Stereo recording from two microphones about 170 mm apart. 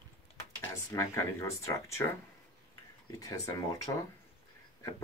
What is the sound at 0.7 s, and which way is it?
Speech, 15° left (ahead or behind).